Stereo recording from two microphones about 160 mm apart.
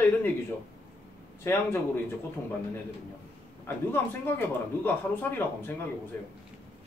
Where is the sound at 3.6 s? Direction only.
15° left (ahead or behind).